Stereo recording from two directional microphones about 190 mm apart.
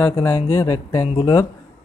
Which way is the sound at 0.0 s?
15° left (ahead or behind).